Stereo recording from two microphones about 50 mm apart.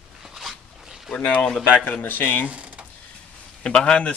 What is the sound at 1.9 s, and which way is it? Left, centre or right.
Speech, left.